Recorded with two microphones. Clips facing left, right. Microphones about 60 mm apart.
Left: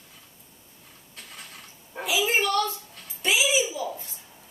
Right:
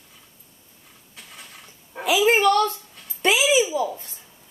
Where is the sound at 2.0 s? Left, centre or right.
Right.